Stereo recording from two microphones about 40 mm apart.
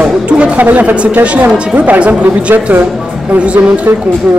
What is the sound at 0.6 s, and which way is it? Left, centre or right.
Speech, right.